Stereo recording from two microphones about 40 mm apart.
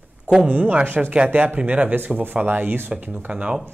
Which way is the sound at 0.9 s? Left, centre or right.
Right.